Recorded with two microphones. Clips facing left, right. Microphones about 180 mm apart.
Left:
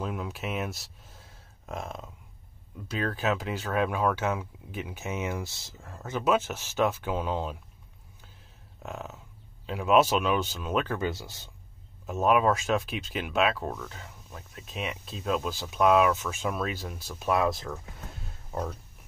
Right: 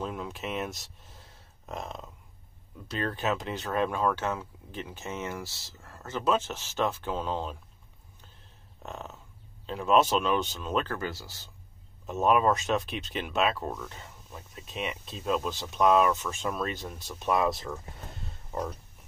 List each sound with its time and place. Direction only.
0.0 s speech: 5° left (ahead or behind)
8.8 s speech: 5° left (ahead or behind)
10.9 s speech: 20° left (ahead or behind)
12.1 s speech: centre (ahead or behind)